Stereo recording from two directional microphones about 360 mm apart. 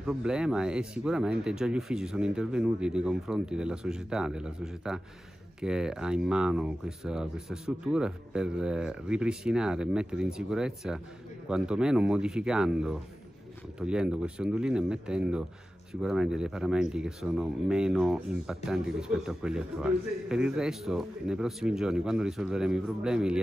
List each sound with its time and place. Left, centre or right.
0.0 s speech: centre